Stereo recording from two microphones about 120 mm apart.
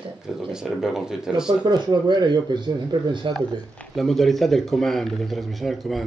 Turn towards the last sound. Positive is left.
turn(degrees=0)  # may be behind; listen again after turning